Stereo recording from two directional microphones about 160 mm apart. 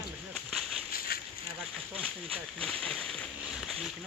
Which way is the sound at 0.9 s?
70° left (ahead or behind).